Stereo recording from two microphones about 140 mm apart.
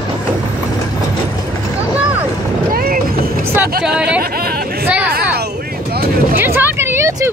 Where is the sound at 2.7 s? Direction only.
90° right.